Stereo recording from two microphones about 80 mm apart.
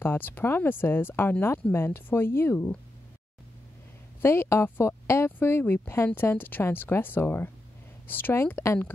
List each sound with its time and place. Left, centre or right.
0.0 s speech: left
4.2 s speech: left